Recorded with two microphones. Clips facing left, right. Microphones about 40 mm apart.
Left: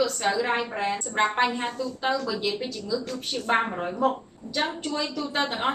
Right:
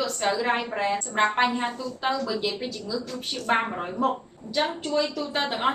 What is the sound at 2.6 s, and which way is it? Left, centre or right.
A woman's voice, centre.